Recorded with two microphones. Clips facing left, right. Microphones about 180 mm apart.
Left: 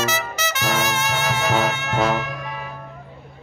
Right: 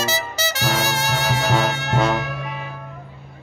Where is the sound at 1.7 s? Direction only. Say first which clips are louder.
Right 2 dB; 35° right (ahead or behind).